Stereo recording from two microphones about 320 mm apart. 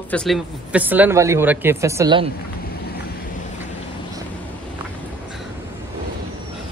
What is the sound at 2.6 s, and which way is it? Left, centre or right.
Vehicle, left.